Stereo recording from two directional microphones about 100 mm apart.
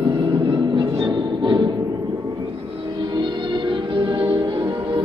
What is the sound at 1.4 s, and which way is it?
Music, 50° right (ahead or behind).